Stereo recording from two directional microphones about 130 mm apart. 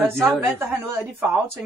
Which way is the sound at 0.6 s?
20° right (ahead or behind).